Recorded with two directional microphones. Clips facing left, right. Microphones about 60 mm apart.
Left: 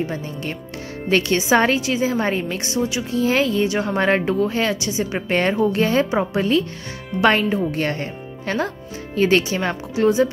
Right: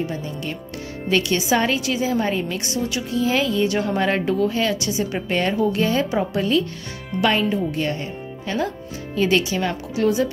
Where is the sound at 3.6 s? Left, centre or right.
Left.